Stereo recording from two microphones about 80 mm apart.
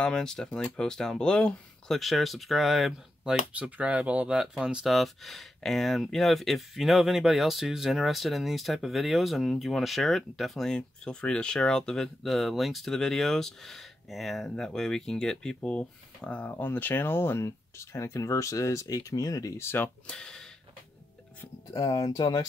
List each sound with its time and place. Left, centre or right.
0.0 s speech: centre
2.0 s speech: centre
3.5 s speech: centre
4.9 s speech: centre; by 19.6 s left
19.6 s speech: left
20.1 s speech: centre
21.7 s speech: left